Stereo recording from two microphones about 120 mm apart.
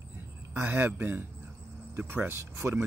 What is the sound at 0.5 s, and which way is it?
Speech, 20° right (ahead or behind).